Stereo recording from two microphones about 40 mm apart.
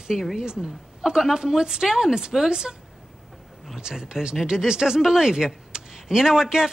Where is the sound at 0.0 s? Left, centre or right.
Centre.